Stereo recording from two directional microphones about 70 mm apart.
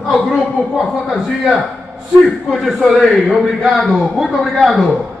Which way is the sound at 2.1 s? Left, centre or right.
Centre.